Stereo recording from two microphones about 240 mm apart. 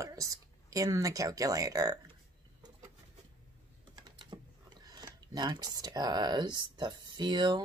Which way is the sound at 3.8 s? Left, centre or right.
Centre.